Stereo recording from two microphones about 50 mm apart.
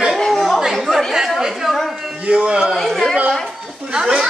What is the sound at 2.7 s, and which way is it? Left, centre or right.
Speech, centre.